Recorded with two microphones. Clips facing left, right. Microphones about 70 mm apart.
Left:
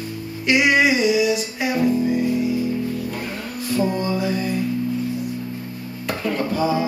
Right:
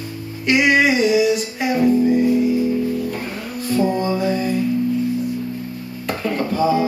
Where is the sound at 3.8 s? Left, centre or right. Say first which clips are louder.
Right 3 dB; right.